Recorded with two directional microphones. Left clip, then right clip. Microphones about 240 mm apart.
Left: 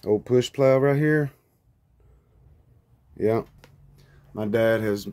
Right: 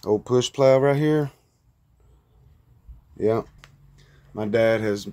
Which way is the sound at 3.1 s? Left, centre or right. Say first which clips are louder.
Right 1 dB; centre.